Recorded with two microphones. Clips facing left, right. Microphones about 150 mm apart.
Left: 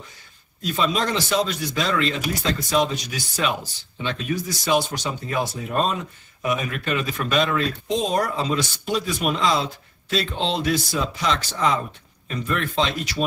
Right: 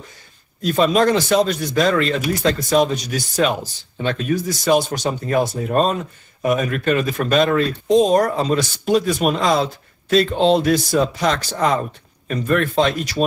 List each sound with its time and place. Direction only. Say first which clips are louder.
0.7 s speech: right 8 dB; 50° right (ahead or behind)